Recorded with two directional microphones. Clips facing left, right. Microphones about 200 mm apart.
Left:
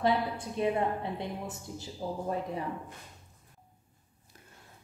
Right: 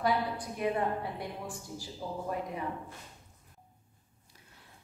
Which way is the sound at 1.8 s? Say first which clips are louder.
Left 4 dB; 30° left (ahead or behind).